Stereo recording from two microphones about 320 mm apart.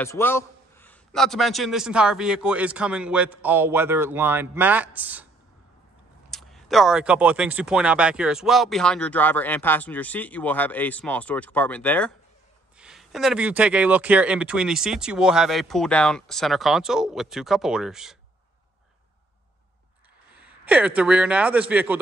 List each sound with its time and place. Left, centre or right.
0.0 s speech: centre
6.3 s speech: centre
20.6 s speech: centre